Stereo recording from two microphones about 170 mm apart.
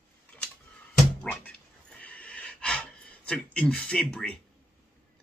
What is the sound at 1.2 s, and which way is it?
Dog, 10° left (ahead or behind).